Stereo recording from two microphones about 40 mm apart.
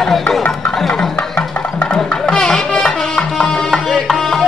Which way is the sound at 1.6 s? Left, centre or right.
Left.